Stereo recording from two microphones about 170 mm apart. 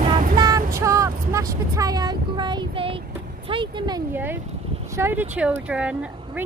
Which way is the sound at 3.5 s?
30° right (ahead or behind).